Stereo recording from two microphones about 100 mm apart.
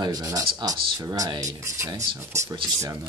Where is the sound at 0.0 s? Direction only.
40° right (ahead or behind).